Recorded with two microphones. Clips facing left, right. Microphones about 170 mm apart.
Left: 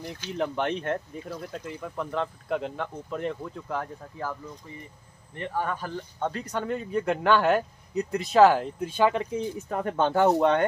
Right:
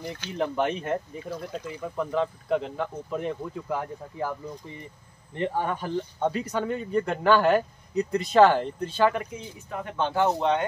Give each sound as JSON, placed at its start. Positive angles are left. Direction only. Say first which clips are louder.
{"t": 0.3, "sound": "speech", "louder": "right 1 dB", "side_deg": 0}
{"t": 2.0, "sound": "speech", "louder": "right 4 dB", "side_deg": 0}
{"t": 5.3, "sound": "speech", "louder": "right 3 dB", "side_deg": -25}
{"t": 6.3, "sound": "speech", "louder": "right 2 dB", "side_deg": -5}
{"t": 9.7, "sound": "speech", "louder": "left 2 dB", "side_deg": 45}